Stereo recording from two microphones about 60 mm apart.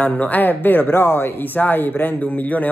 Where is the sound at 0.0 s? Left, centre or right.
Left.